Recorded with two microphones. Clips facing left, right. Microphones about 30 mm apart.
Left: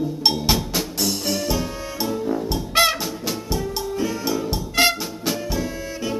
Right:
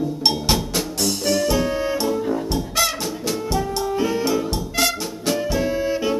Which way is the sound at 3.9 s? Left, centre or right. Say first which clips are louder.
Right 5 dB; centre.